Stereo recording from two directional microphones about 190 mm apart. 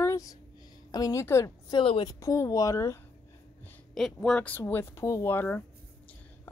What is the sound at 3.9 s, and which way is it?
A woman's voice, centre (ahead or behind).